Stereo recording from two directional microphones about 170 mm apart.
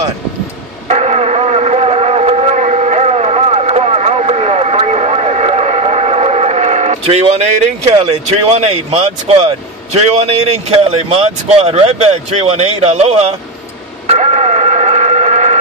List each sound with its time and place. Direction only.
0.8 s a sound: 40° right (ahead or behind)
7.8 s a man's voice: 40° right (ahead or behind)
14.0 s radio: 40° right (ahead or behind)